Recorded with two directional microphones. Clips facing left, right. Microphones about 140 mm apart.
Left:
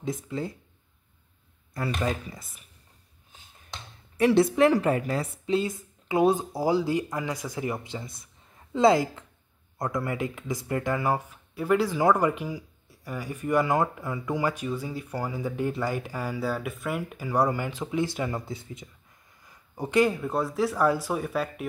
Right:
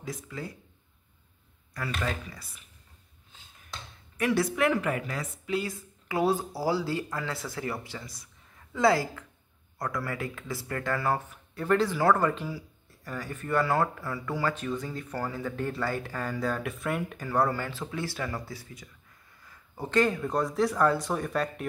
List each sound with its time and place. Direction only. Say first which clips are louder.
0.0 s speech: left 6 dB; 25° left (ahead or behind)
1.7 s speech: left 4 dB; 25° left (ahead or behind)
3.7 s a sound: left 3 dB; 25° left (ahead or behind)
4.6 s speech: left 5 dB; 35° left (ahead or behind); by 21.6 s 5° left (ahead or behind)